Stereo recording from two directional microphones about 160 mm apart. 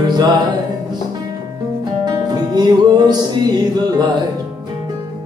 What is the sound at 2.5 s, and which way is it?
Music, 25° right (ahead or behind).